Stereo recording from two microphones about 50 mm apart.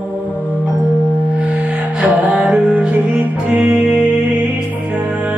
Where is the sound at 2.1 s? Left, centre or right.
Right.